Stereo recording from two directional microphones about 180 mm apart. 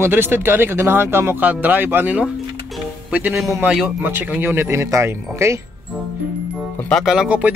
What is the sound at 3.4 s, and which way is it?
Speech, 15° right (ahead or behind).